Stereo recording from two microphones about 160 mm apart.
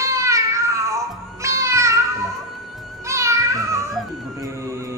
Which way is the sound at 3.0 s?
20° right (ahead or behind).